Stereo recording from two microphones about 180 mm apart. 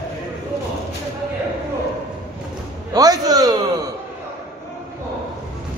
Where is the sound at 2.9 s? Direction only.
20° right (ahead or behind).